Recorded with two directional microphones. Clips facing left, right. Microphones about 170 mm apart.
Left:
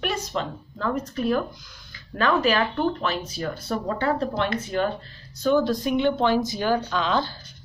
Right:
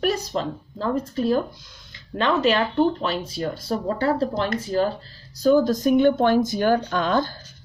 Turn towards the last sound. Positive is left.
turn(degrees=-50)  # may be behind; listen again after turning